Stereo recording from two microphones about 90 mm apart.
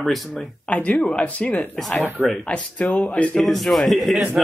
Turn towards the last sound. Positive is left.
turn(degrees=0)  # may be behind; listen again after turning